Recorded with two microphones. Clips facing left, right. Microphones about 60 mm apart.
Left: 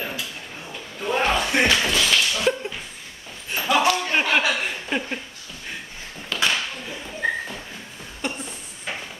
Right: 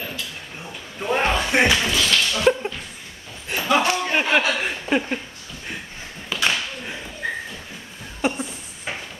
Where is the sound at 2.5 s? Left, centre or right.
Right.